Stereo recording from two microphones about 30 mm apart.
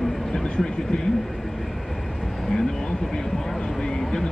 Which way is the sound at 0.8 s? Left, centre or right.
Left.